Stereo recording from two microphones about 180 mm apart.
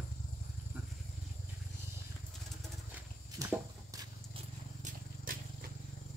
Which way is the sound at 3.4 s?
20° right (ahead or behind).